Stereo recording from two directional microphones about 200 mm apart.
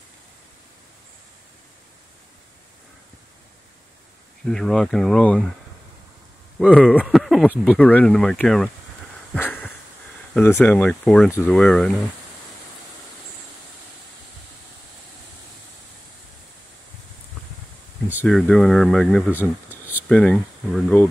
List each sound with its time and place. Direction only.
4.5 s speech: 5° left (ahead or behind)
7.0 s speech: centre (ahead or behind)
7.8 s speech: 5° left (ahead or behind)
9.3 s a sound: 10° left (ahead or behind)
10.3 s speech: 10° left (ahead or behind)
18.2 s speech: 5° left (ahead or behind)
19.7 s a sound: 90° left
20.1 s speech: 5° left (ahead or behind)